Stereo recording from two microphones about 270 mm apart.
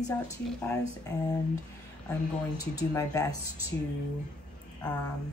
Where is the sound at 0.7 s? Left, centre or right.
Centre.